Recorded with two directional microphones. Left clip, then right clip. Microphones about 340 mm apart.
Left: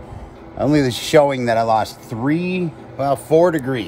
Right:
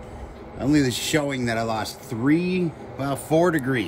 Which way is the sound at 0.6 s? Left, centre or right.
Left.